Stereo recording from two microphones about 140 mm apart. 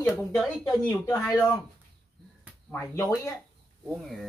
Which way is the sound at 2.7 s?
20° left (ahead or behind).